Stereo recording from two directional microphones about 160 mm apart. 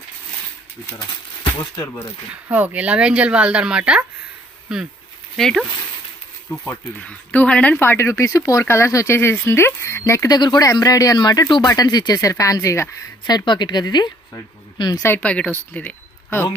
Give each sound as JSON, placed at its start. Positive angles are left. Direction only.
{"t": 0.8, "sound": "speech", "side_deg": 25}
{"t": 2.4, "sound": "speech", "side_deg": -10}
{"t": 15.0, "sound": "speech", "side_deg": 10}